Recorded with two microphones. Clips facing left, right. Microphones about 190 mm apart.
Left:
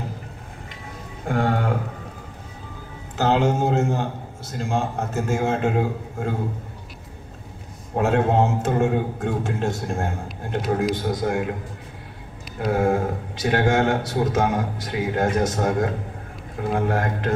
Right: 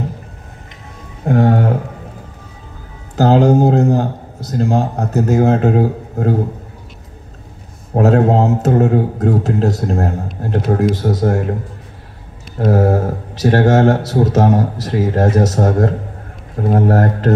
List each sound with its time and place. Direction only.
1.2 s a sound: 40° right (ahead or behind)
3.2 s a man's voice: 40° right (ahead or behind)
7.9 s a man's voice: 40° right (ahead or behind)
12.5 s a man's voice: 40° right (ahead or behind)